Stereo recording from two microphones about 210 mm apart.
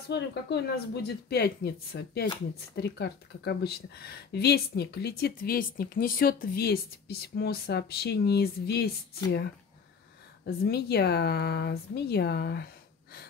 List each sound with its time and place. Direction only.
0.1 s speech: 50° left (ahead or behind)
10.4 s speech: 50° left (ahead or behind)